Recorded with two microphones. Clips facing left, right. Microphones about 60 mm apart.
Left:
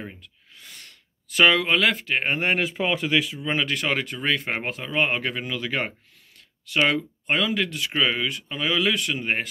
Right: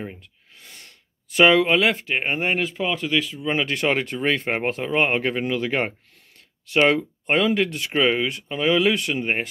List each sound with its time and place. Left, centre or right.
0.2 s a sound: right
1.4 s speech: right
2.1 s speech: centre
2.4 s speech: centre
2.7 s speech: centre
3.5 s speech: right
7.9 s speech: right